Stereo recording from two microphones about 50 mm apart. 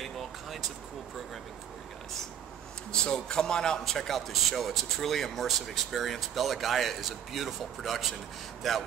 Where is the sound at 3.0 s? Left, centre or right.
Centre.